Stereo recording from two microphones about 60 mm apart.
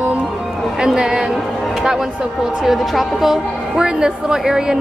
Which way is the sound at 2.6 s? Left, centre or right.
Centre.